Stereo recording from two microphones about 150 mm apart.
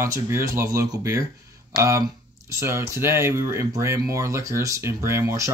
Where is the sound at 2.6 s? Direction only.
15° right (ahead or behind).